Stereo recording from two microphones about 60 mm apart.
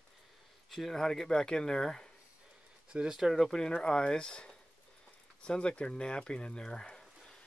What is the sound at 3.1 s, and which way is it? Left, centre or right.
Speech, centre.